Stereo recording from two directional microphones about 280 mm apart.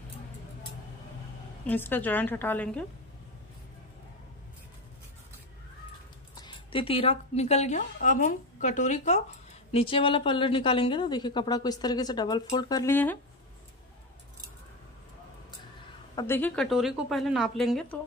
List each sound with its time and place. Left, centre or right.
1.7 s a woman's voice: centre
6.4 s a woman's voice: centre
16.2 s a woman's voice: centre